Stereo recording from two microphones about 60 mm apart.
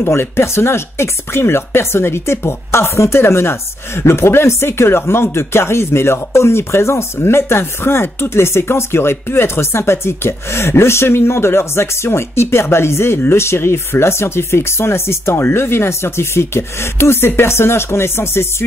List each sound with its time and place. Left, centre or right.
0.0 s speech: left